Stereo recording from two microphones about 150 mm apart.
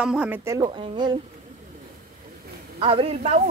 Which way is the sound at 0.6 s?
30° right (ahead or behind).